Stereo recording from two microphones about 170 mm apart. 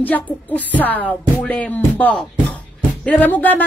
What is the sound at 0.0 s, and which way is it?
A woman's voice, 10° left (ahead or behind).